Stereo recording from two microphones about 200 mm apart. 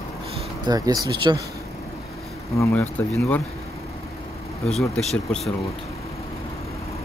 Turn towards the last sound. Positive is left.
turn(degrees=0)  # may be behind; listen again after turning